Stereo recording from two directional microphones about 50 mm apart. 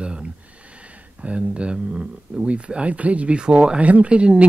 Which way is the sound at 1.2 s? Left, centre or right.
Right.